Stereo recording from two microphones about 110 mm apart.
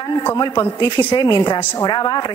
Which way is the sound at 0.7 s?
45° left (ahead or behind).